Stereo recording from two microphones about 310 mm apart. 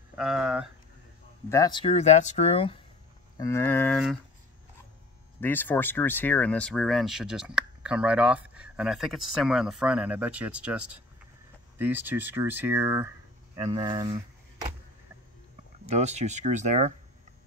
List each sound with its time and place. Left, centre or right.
0.1 s speech: centre
1.5 s speech: centre
5.4 s speech: centre
15.8 s speech: right